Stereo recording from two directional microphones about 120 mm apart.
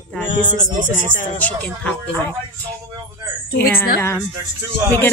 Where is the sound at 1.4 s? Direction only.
10° left (ahead or behind).